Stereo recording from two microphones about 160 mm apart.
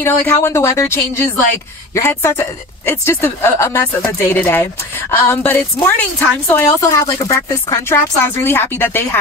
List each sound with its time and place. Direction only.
0.0 s speech: 15° left (ahead or behind)